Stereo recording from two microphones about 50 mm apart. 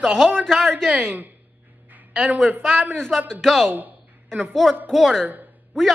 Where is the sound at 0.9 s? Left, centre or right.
Right.